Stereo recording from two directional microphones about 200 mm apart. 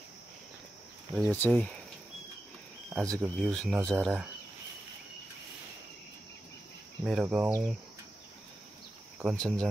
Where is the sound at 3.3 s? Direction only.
5° left (ahead or behind).